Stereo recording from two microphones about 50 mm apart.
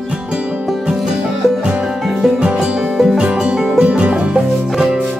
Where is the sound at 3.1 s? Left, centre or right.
Centre.